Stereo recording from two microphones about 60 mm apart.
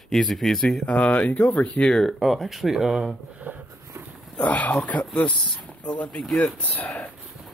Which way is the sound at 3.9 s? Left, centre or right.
Right.